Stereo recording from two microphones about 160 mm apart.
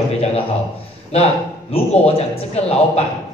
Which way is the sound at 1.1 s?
40° left (ahead or behind).